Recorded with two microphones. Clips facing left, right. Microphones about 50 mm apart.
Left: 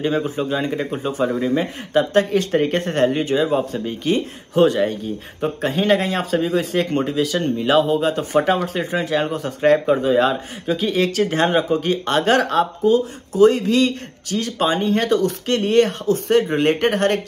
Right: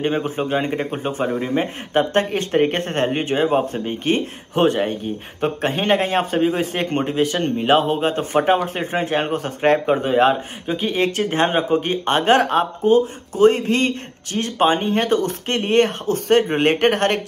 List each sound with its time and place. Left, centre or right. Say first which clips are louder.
0.0 s speech: even; right